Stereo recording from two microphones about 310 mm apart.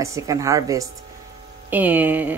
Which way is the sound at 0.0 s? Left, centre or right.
Centre.